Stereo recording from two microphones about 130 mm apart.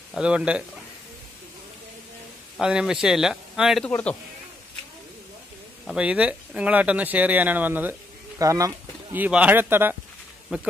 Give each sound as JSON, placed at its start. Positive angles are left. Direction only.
{"t": 0.1, "sound": "speech", "side_deg": -5}
{"t": 2.5, "sound": "speech", "side_deg": -5}
{"t": 3.8, "sound": "speech", "side_deg": 10}
{"t": 5.9, "sound": "speech", "side_deg": -10}
{"t": 8.4, "sound": "speech", "side_deg": -25}
{"t": 9.1, "sound": "speech", "side_deg": -10}
{"t": 10.5, "sound": "speech", "side_deg": -5}